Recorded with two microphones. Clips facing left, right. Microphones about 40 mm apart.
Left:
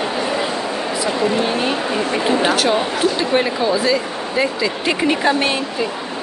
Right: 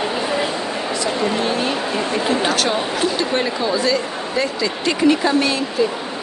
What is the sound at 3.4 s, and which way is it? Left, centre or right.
Speech, centre.